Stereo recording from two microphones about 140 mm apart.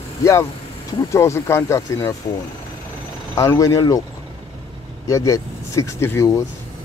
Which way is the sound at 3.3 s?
25° left (ahead or behind).